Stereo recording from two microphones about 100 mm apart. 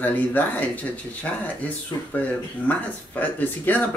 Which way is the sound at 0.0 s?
15° left (ahead or behind).